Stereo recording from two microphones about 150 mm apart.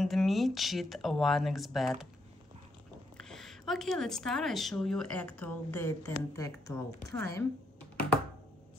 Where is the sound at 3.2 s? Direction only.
5° left (ahead or behind); by 7.4 s 20° left (ahead or behind).